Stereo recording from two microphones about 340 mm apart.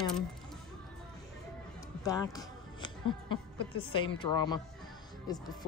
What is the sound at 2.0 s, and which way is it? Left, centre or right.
Speech, centre.